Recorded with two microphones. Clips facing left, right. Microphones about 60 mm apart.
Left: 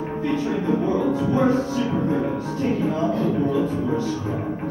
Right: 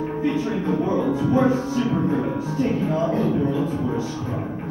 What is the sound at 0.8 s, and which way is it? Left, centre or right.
Music, centre.